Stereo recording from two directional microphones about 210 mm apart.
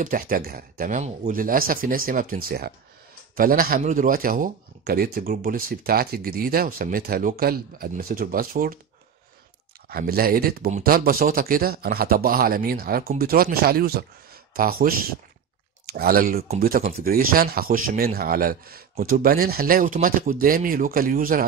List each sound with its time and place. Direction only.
0.0 s speech: 40° right (ahead or behind)
9.8 s speech: 45° right (ahead or behind)